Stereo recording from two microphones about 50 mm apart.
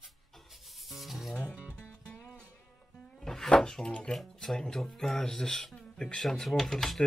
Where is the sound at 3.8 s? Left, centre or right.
Centre.